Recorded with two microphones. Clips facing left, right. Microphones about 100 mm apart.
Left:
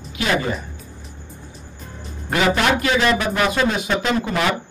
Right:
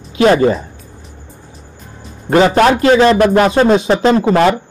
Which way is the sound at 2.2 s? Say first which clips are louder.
Right 9 dB; 35° right (ahead or behind).